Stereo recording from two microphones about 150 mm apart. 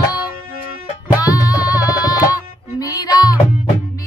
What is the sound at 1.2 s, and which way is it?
Music, 25° left (ahead or behind).